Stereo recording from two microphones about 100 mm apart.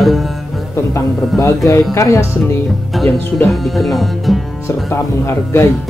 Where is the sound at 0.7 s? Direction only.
25° left (ahead or behind).